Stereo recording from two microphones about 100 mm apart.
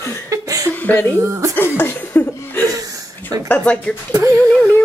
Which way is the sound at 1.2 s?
30° right (ahead or behind).